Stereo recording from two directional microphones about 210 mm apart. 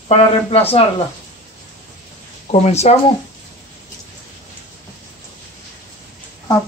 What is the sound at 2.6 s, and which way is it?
Speech, 30° left (ahead or behind).